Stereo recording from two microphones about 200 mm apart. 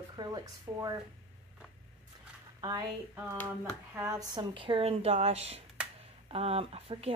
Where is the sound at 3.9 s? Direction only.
15° right (ahead or behind); by 7.1 s 30° right (ahead or behind).